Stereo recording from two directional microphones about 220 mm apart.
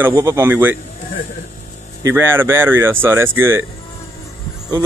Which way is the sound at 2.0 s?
10° right (ahead or behind).